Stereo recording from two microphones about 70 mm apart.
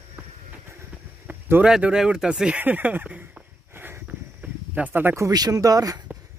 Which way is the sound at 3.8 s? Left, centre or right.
Right.